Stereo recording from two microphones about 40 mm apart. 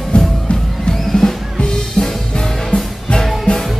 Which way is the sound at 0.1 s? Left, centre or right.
Left.